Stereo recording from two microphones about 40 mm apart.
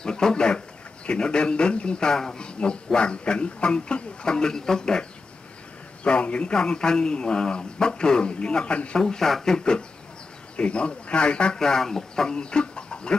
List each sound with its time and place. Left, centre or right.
0.0 s a man's voice: centre
6.0 s a man's voice: left
9.0 s a man's voice: centre; by 11.5 s left
11.5 s speech: centre